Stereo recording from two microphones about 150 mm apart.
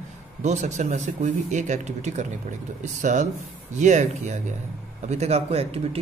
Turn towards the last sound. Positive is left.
turn(degrees=-40)  # may be behind; listen again after turning